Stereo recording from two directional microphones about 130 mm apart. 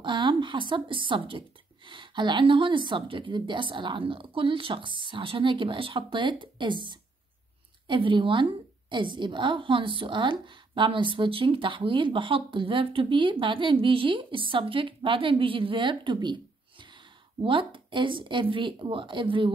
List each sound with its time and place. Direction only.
0.0 s a woman's voice: 35° right (ahead or behind)